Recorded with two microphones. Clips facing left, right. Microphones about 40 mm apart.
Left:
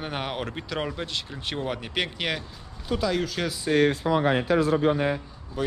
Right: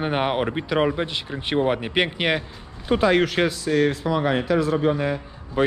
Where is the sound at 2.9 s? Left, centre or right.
Right.